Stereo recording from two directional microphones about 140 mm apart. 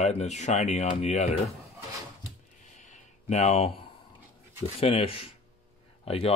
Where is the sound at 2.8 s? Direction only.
60° left (ahead or behind).